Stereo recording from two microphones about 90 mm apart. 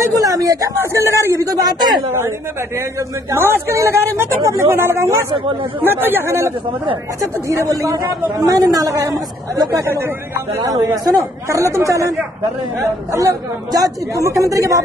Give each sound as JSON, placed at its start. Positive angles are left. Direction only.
{"t": 0.0, "sound": "a sound", "side_deg": -40}
{"t": 0.7, "sound": "speech", "side_deg": -30}
{"t": 3.3, "sound": "a woman's voice", "side_deg": -25}
{"t": 13.1, "sound": "speech", "side_deg": -40}